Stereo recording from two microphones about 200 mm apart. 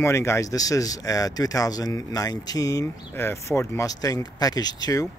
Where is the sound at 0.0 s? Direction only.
15° left (ahead or behind).